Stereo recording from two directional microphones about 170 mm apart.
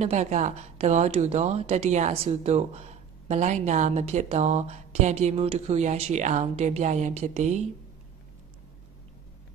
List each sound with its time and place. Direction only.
0.0 s speech: 40° right (ahead or behind)